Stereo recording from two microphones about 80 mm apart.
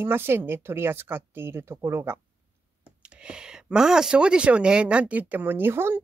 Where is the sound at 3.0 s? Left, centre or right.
Centre.